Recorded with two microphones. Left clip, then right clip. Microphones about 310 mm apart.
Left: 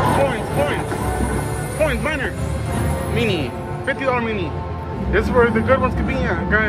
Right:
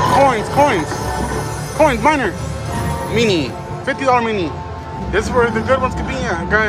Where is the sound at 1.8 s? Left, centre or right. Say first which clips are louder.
Right 8 dB; centre.